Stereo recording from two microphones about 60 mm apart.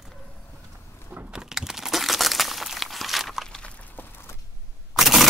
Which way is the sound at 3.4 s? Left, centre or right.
Centre.